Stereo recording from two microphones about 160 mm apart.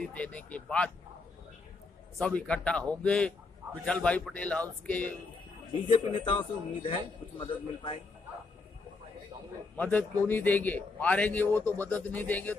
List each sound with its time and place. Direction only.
0.0 s a man's voice: 10° left (ahead or behind)
2.1 s a man's voice: 5° left (ahead or behind)
5.9 s a man's voice: 30° left (ahead or behind)
9.8 s a man's voice: 10° left (ahead or behind)